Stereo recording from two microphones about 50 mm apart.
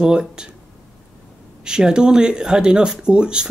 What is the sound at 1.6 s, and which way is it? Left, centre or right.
Speech, centre.